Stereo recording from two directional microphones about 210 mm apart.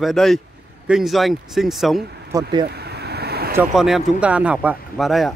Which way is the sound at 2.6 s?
50° right (ahead or behind).